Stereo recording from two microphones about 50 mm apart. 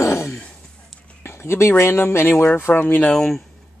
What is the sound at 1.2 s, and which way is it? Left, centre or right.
Speech, left.